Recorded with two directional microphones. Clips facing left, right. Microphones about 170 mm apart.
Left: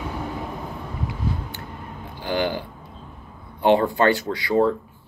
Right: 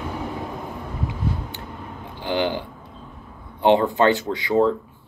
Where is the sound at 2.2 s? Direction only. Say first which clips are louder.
Right 1 dB; 20° right (ahead or behind).